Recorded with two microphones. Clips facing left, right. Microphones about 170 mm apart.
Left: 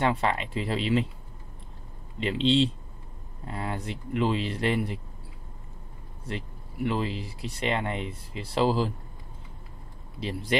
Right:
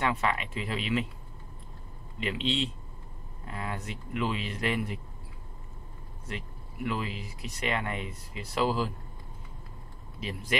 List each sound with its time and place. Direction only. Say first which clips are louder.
0.0 s speech: left 3 dB; 30° left (ahead or behind)
2.1 s speech: left 7 dB; 30° left (ahead or behind)
6.2 s speech: left 4 dB; 30° left (ahead or behind)
10.2 s speech: left 5 dB; 30° left (ahead or behind)